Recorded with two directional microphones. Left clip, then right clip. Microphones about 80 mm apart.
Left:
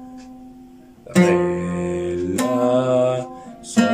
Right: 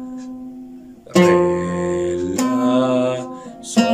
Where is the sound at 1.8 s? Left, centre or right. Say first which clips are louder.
Right 3 dB; centre.